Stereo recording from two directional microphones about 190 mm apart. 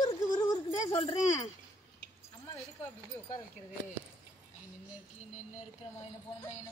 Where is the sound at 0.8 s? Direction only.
30° left (ahead or behind).